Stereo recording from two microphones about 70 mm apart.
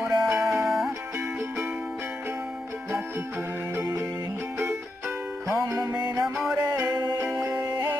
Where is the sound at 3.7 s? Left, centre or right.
Right.